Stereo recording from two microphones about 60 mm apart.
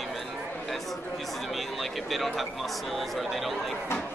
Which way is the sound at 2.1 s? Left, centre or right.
Centre.